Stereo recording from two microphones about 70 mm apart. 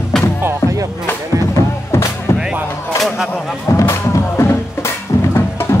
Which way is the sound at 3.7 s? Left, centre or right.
Left.